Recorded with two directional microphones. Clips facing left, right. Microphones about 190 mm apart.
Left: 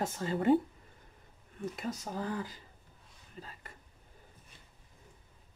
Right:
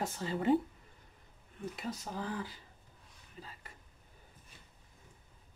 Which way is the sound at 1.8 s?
45° left (ahead or behind).